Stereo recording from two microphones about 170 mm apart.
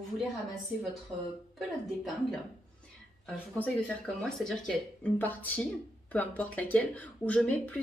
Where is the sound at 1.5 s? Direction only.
Centre (ahead or behind).